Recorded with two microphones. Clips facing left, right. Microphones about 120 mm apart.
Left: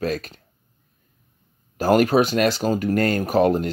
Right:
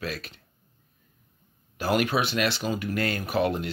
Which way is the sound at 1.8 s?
40° left (ahead or behind).